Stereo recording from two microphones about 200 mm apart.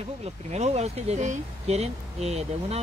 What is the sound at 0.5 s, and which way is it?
Speech, 35° right (ahead or behind).